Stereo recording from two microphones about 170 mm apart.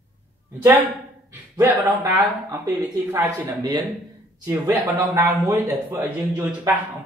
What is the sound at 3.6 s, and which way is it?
Speech, 25° right (ahead or behind).